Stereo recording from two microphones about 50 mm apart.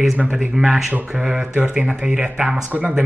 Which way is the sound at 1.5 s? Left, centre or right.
Right.